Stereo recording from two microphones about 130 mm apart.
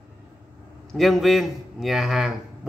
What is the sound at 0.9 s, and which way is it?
A man's voice, centre (ahead or behind).